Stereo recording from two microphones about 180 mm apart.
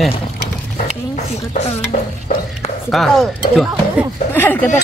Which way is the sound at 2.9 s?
Centre (ahead or behind).